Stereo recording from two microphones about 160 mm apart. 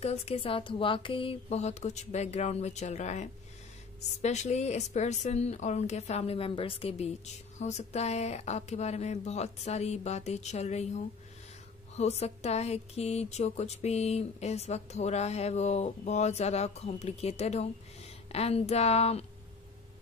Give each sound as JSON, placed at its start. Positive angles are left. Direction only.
{"t": 0.0, "sound": "speech", "side_deg": 40}